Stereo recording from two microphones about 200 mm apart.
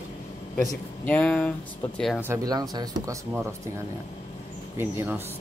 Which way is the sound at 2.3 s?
20° right (ahead or behind).